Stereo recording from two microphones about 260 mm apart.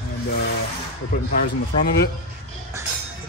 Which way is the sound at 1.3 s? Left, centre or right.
Left.